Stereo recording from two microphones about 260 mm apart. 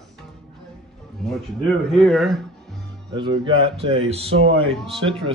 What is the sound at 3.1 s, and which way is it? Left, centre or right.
Speech, centre.